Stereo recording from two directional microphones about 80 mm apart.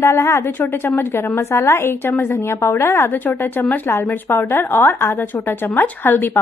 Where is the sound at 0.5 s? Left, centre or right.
Left.